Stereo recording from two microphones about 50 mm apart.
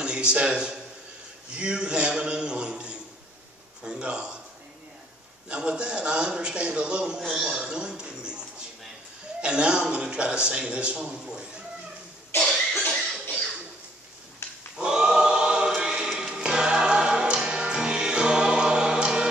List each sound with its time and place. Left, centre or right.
0.0 s a man's voice: centre
5.5 s a man's voice: right
7.4 s a sound: centre
9.4 s a man's voice: right
12.3 s cough: left
14.8 s choir: centre
16.1 s music: centre